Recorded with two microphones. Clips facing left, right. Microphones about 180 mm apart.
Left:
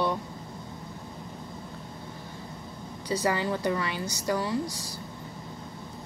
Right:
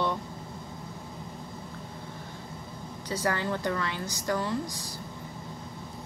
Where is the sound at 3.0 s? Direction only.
10° left (ahead or behind).